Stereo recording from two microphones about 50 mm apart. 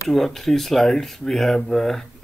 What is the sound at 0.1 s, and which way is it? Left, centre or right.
Speech, centre.